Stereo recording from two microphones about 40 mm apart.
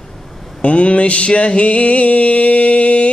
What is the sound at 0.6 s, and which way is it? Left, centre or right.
Mantra, left.